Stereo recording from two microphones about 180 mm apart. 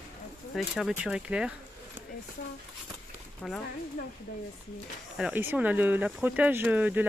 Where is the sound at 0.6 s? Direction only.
5° right (ahead or behind).